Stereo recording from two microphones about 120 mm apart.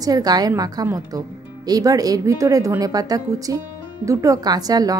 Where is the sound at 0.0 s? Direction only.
30° right (ahead or behind).